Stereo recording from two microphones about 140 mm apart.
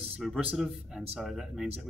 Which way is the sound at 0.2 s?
Centre (ahead or behind).